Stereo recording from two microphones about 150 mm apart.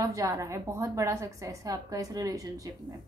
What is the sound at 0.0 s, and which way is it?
A woman's voice, 20° right (ahead or behind).